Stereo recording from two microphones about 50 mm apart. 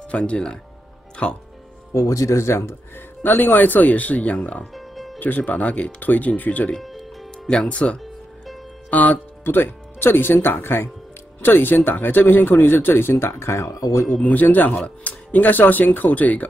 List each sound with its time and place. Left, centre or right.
0.1 s speech: left
1.1 s music: left
2.0 s speech: left
3.2 s speech: left
4.7 s music: centre
5.2 s speech: left
6.8 s music: centre
7.4 s speech: left
9.4 s speech: left
14.2 s speech: left